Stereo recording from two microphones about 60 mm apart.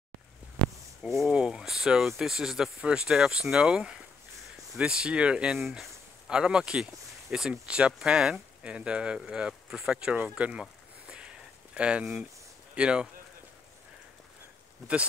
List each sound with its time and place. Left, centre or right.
1.0 s speech: centre
1.3 s speech: centre
10.1 s a sound: right
12.7 s speech: centre